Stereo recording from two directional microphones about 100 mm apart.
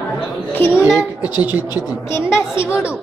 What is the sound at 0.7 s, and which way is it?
A woman's voice, 10° right (ahead or behind).